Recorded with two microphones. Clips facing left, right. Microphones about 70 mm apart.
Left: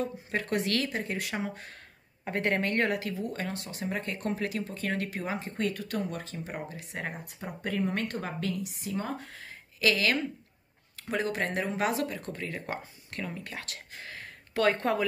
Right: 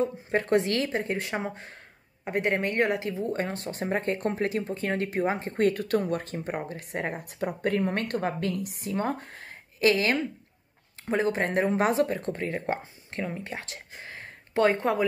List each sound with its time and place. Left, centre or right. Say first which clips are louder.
0.0 s a woman's voice: right 6 dB; right